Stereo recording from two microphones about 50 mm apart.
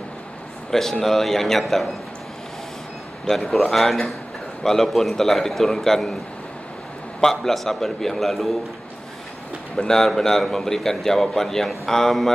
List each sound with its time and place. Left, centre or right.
0.7 s a man's voice: centre
3.3 s a man's voice: centre
7.2 s a man's voice: centre
9.8 s a man's voice: centre